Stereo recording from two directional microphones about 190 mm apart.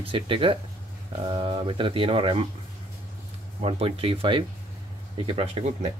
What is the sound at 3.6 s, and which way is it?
Speech, 30° right (ahead or behind).